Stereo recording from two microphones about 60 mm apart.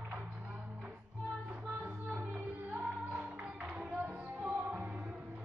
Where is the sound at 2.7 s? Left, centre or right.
Right.